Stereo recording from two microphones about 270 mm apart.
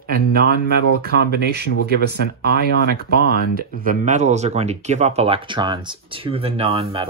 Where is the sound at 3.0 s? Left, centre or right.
Right.